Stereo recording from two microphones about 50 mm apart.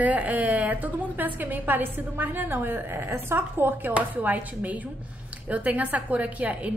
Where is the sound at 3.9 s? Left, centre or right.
Right.